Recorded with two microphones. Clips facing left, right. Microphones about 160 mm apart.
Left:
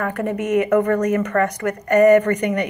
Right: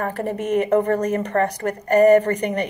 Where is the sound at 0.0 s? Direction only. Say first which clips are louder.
Left 2 dB; 35° right (ahead or behind).